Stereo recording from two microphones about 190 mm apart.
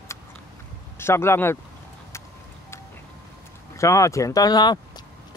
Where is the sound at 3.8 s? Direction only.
15° left (ahead or behind).